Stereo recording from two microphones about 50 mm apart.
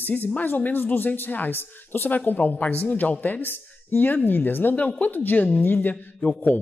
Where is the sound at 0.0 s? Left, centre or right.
Left.